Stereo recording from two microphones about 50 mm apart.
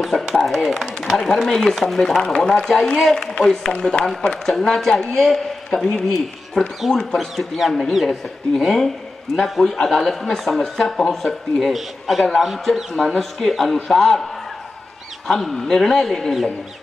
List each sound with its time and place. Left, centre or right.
0.0 s a sound: centre
1.5 s speech: centre
15.2 s speech: centre